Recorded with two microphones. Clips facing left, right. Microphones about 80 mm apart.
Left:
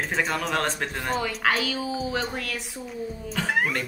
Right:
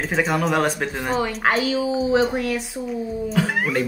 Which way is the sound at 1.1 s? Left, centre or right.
Right.